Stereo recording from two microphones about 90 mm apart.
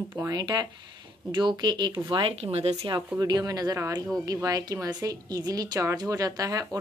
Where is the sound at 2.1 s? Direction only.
70° right (ahead or behind).